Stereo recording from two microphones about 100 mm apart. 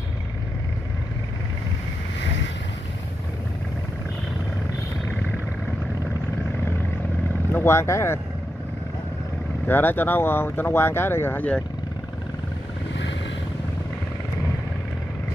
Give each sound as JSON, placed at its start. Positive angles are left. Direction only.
{"t": 7.5, "sound": "speech", "side_deg": 25}
{"t": 9.7, "sound": "speech", "side_deg": 20}